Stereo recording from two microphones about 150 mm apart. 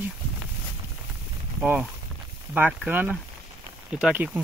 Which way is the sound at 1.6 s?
5° right (ahead or behind).